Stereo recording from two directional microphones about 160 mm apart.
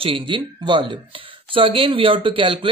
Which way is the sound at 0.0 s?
35° right (ahead or behind).